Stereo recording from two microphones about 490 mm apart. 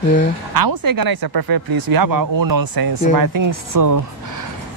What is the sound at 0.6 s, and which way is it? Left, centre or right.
Speech, right.